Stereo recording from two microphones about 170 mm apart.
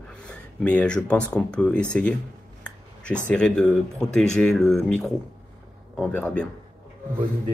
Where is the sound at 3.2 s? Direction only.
5° left (ahead or behind).